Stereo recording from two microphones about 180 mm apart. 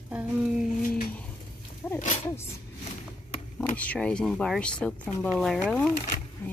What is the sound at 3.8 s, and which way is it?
Speech, 5° left (ahead or behind).